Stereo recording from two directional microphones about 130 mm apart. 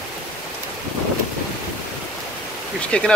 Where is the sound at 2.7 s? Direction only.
10° left (ahead or behind).